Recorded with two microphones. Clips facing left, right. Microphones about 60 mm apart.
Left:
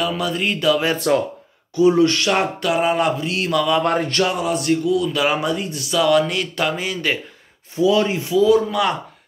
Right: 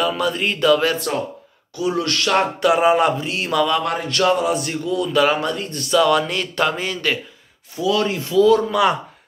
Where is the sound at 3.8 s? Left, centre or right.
Left.